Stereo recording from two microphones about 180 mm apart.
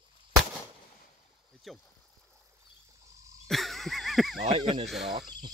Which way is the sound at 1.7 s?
Centre (ahead or behind).